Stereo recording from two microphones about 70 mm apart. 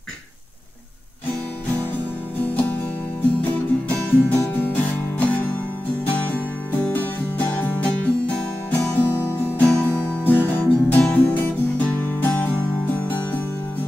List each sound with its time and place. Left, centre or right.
2.4 s music: left